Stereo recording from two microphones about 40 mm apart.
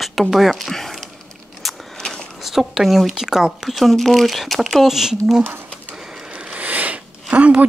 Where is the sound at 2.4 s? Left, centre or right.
Centre.